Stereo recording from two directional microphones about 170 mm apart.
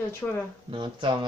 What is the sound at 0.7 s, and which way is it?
Speech, 25° right (ahead or behind).